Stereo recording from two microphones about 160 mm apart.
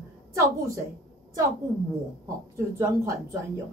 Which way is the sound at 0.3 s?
20° right (ahead or behind).